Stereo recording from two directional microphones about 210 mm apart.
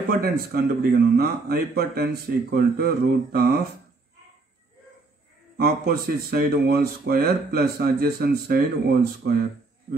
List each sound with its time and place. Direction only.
0.2 s speech: 50° right (ahead or behind)
5.6 s speech: 45° right (ahead or behind)